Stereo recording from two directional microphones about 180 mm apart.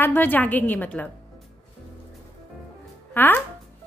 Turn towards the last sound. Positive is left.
turn(degrees=10)  # may be behind; listen again after turning